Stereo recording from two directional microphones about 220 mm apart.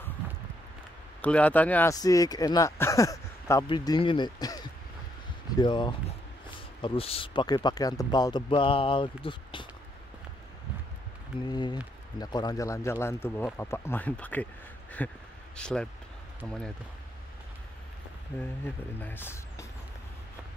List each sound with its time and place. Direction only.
1.2 s speech: 5° left (ahead or behind); by 9.7 s 20° left (ahead or behind)
11.4 s speech: 20° left (ahead or behind)
18.3 s speech: 10° left (ahead or behind)